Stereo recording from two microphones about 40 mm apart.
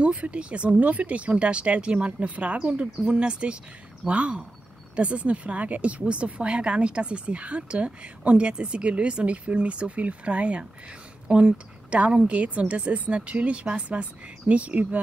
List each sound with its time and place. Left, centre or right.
0.0 s speech: right